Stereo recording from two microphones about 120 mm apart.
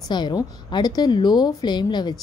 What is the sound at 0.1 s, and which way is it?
A woman's voice, 35° left (ahead or behind).